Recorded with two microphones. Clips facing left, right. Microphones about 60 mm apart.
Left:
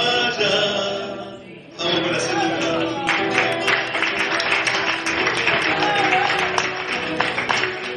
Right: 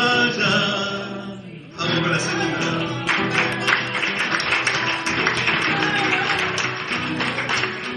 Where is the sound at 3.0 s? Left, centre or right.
Centre.